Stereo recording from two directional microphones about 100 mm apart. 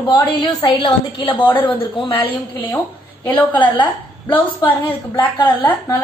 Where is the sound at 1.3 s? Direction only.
20° left (ahead or behind).